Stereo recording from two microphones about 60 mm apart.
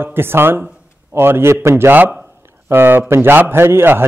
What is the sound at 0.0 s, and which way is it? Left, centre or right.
A man's voice, right.